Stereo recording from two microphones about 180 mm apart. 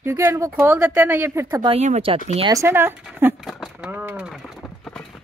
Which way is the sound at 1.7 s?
40° right (ahead or behind).